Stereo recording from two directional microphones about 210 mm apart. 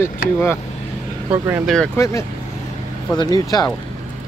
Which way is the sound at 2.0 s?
15° left (ahead or behind).